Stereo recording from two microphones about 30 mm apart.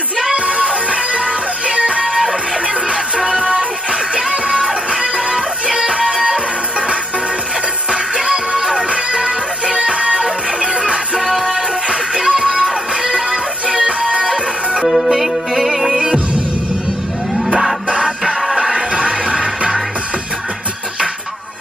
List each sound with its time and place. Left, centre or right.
1.8 s music: right
3.3 s music: right
5.3 s music: right
8.3 s music: right
11.1 s music: centre; by 14.2 s right
15.0 s music: centre
18.9 s music: right